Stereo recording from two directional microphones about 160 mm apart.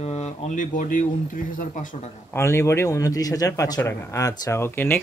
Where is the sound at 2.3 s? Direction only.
15° left (ahead or behind).